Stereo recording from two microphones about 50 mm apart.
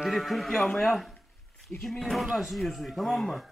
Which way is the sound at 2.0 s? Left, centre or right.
Centre.